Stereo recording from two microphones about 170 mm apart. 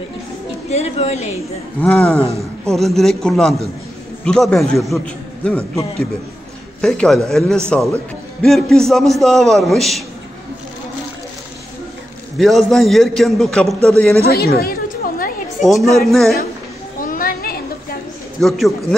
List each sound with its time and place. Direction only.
0.7 s a woman's voice: 40° left (ahead or behind)
1.8 s a man's voice: 5° left (ahead or behind)
2.1 s speech: 15° right (ahead or behind)
2.7 s a man's voice: centre (ahead or behind)
6.8 s a man's voice: 5° left (ahead or behind)
12.4 s a man's voice: centre (ahead or behind)
14.2 s a sound: 65° left (ahead or behind)
15.6 s a man's voice: centre (ahead or behind)
17.0 s children playing: 55° left (ahead or behind)
18.4 s a man's voice: centre (ahead or behind)